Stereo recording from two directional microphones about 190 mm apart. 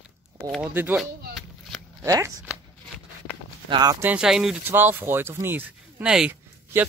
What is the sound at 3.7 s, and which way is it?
Speech, 20° right (ahead or behind).